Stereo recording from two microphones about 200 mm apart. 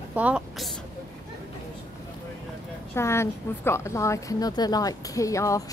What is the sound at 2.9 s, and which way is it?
A woman's voice, 15° left (ahead or behind).